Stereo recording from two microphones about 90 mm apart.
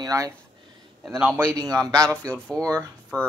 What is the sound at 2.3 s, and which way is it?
Speech, 10° left (ahead or behind).